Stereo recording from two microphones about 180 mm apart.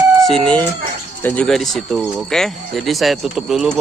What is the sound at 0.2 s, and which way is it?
Speech, 5° left (ahead or behind).